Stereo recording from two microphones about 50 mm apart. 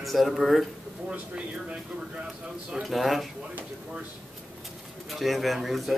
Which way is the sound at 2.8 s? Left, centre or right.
Centre.